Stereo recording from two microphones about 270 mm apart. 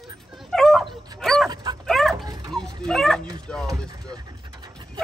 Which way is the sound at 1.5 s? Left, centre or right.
Centre.